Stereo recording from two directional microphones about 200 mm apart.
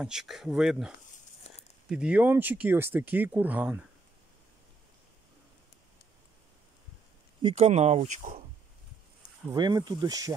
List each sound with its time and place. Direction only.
0.0 s speech: 5° right (ahead or behind)
1.5 s a sound: 30° left (ahead or behind)
1.9 s speech: 5° right (ahead or behind)
7.4 s speech: 30° right (ahead or behind)
9.5 s speech: 20° right (ahead or behind)